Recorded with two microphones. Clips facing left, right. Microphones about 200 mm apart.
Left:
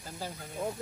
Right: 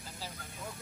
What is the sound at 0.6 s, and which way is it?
Speech, 55° left (ahead or behind).